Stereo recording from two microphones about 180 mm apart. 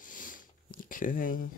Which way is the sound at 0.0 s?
50° left (ahead or behind).